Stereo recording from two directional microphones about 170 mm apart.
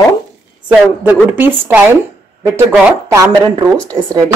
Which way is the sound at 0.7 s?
10° right (ahead or behind).